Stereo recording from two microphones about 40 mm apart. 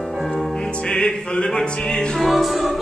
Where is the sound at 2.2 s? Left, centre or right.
Centre.